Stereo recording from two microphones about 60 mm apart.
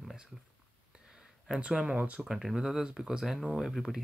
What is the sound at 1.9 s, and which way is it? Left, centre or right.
Speech, right.